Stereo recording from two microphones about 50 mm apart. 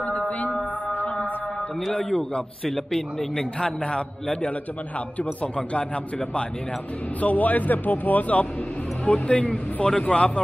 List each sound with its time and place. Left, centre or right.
0.8 s music: left
1.9 s a man's voice: centre
3.6 s speech: left
7.2 s a man's voice: left
9.8 s a man's voice: centre